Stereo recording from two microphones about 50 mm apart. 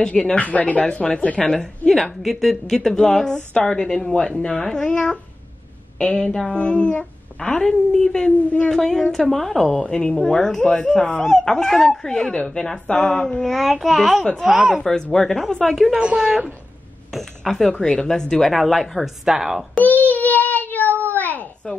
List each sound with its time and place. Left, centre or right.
0.0 s speech: centre
7.3 s speech: centre
9.8 s speech: centre
13.4 s a child's voice: centre
14.5 s speech: centre
14.8 s speech: centre
15.9 s speech: centre
17.4 s speech: centre
19.8 s child singing: left
21.1 s babbling: left